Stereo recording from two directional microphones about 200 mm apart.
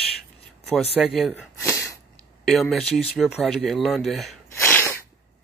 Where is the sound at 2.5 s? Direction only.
Centre (ahead or behind).